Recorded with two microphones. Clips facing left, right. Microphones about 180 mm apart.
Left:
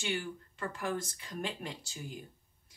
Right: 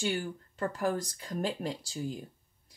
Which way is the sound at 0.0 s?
45° right (ahead or behind).